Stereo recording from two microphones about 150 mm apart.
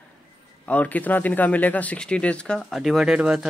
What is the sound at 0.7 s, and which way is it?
Speech, 10° left (ahead or behind).